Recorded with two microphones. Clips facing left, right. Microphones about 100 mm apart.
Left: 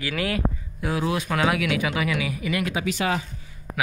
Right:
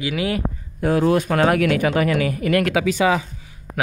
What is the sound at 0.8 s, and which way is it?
Speech, 45° right (ahead or behind).